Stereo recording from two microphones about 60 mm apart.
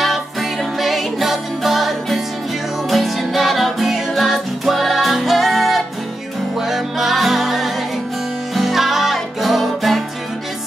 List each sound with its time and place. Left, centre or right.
0.0 s music: centre